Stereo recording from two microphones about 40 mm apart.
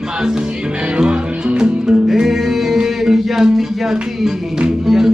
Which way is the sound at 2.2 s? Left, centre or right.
Centre.